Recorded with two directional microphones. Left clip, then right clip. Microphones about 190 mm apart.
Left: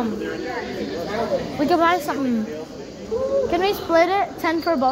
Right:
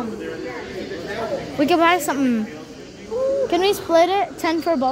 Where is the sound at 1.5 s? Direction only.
45° right (ahead or behind).